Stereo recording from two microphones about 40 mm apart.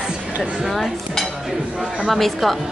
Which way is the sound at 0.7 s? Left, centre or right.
Centre.